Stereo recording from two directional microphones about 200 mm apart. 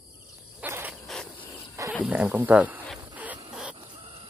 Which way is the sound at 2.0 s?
5° right (ahead or behind).